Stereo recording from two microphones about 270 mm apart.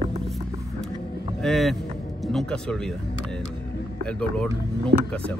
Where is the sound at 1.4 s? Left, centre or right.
Centre.